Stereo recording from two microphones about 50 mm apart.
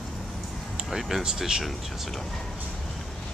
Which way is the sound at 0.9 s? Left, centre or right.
Centre.